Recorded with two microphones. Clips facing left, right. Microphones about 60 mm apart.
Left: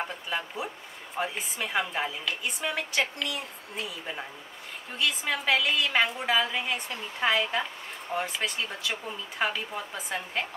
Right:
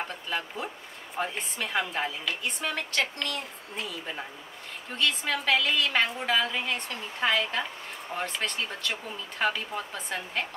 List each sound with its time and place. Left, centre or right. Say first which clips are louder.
0.3 s a woman's voice: right 2 dB; centre